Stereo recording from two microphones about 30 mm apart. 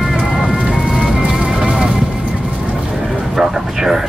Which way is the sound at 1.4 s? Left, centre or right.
Right.